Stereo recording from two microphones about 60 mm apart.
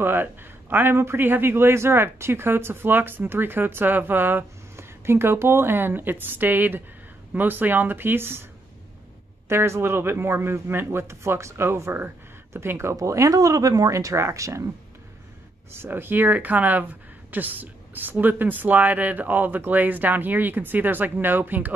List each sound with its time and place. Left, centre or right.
0.0 s a man's voice: right
9.5 s speech: right
12.9 s speech: right
15.7 s a man's voice: right